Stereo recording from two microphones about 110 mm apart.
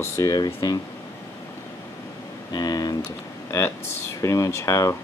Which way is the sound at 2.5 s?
35° left (ahead or behind).